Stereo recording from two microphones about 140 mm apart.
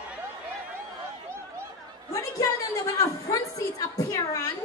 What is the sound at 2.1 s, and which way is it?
Speech, 25° left (ahead or behind).